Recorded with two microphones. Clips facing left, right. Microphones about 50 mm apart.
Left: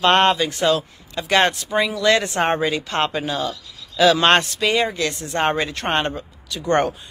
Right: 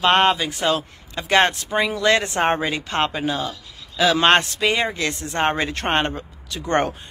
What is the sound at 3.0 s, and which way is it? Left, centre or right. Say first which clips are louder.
Speech: even; centre.